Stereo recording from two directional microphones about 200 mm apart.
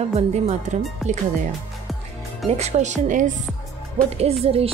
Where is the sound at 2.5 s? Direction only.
35° right (ahead or behind).